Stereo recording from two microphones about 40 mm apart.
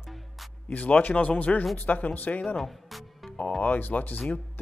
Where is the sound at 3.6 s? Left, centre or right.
Left.